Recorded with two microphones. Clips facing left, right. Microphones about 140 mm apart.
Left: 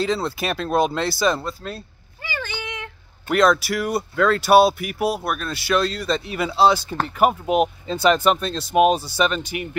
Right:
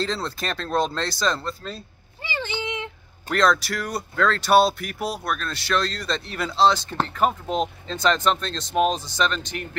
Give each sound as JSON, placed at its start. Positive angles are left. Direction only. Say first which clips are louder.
{"t": 0.0, "sound": "speech", "louder": "left 4 dB", "side_deg": 5}
{"t": 2.2, "sound": "a sound", "louder": "right 2 dB", "side_deg": -25}
{"t": 3.3, "sound": "speech", "louder": "left 3 dB", "side_deg": 5}